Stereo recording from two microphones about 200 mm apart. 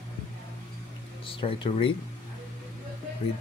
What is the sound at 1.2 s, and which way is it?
Speech, 25° left (ahead or behind).